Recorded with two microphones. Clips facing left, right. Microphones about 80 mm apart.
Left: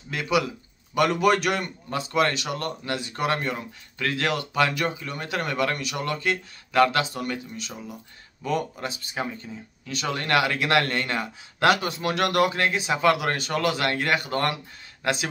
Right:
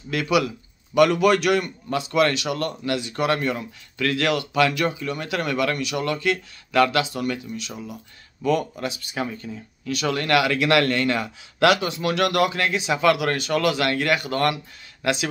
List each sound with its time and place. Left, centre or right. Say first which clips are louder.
0.1 s speech: right 3 dB; left